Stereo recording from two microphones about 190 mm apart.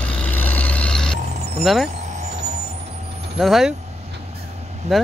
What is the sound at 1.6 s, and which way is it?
Speech, centre (ahead or behind).